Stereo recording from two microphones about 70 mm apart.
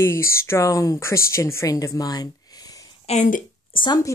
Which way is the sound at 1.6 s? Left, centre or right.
Left.